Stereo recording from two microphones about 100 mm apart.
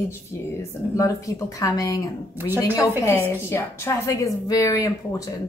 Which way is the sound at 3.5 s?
30° left (ahead or behind).